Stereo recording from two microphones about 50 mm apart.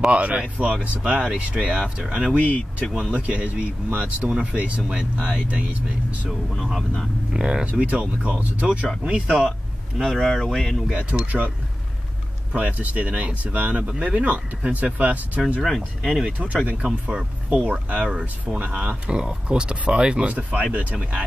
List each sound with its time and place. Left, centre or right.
0.1 s speech: right
2.3 s speech: left
2.9 s speech: centre
6.2 s speech: centre
7.3 s speech: centre
7.6 s speech: right
9.0 s speech: centre
9.5 s speech: centre
10.9 s speech: right
12.5 s speech: right
15.6 s speech: centre
17.1 s speech: right